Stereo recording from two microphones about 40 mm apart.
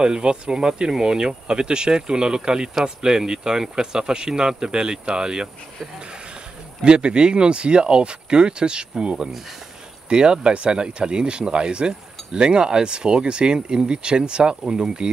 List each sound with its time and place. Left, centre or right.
0.0 s speech: right
6.8 s speech: right